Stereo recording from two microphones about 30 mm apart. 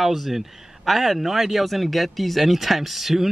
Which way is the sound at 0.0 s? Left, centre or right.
Centre.